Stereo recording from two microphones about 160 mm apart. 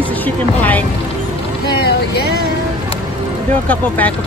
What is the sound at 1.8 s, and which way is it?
Speech, 90° left.